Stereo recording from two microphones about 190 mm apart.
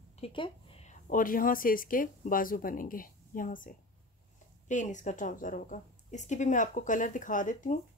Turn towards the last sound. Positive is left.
turn(degrees=45)  # may be behind; listen again after turning